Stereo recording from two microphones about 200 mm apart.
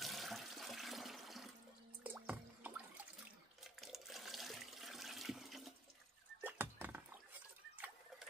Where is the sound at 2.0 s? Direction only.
10° right (ahead or behind).